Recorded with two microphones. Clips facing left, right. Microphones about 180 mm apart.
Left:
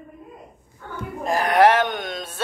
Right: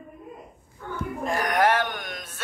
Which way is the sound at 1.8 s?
20° left (ahead or behind).